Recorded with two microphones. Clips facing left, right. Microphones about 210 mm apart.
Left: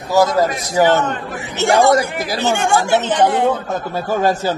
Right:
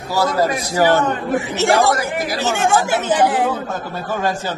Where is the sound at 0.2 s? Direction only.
15° left (ahead or behind).